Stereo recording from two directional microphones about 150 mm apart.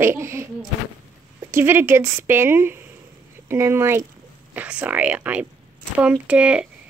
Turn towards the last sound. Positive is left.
turn(degrees=-10)  # may be behind; listen again after turning